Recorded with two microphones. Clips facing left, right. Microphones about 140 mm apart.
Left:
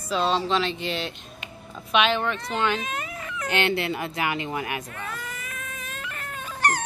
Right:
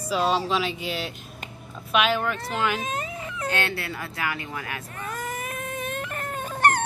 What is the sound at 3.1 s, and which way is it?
Baby cry, 25° right (ahead or behind).